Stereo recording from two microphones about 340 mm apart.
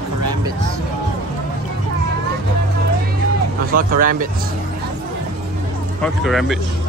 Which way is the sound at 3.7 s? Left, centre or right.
Right.